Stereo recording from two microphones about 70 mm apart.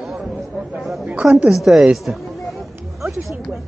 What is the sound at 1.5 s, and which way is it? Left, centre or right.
Speech, centre.